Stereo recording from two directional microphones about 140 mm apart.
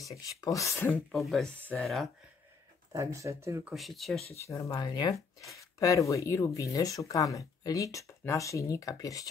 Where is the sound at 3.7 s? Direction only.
Centre (ahead or behind).